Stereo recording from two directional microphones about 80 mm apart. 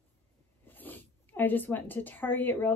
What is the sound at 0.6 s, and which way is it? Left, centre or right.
Speech, left.